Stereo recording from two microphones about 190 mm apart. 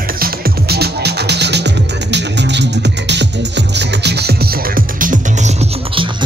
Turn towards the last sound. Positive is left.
turn(degrees=-35)  # may be behind; listen again after turning